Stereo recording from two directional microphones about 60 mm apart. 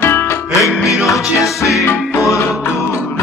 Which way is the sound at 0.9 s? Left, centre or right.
Centre.